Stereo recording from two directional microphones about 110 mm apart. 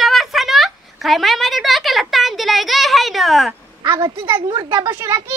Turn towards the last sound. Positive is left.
turn(degrees=-25)  # may be behind; listen again after turning